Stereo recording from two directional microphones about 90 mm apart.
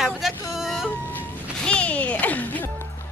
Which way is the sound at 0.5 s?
Centre (ahead or behind).